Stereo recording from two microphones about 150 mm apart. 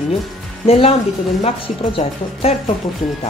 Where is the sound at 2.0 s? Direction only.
45° left (ahead or behind).